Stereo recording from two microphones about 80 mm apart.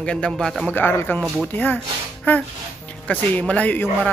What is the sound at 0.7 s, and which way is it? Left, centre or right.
Speech, left.